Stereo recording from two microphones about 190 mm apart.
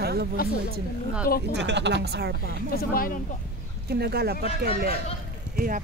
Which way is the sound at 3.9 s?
55° right (ahead or behind).